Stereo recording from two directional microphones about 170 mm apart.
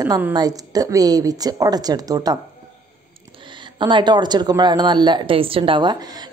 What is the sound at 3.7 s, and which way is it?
Speech, 30° right (ahead or behind).